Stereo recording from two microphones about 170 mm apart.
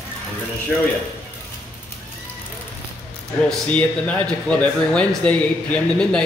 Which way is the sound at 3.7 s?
10° left (ahead or behind).